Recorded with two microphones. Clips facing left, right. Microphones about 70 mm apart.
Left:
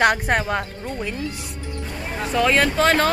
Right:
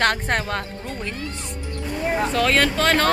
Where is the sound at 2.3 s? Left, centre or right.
Centre.